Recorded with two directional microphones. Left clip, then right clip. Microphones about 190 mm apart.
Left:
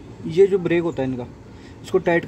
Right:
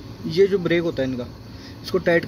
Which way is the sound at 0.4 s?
10° left (ahead or behind).